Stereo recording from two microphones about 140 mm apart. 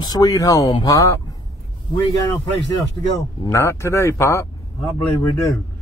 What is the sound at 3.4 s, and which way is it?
Speech, 20° left (ahead or behind).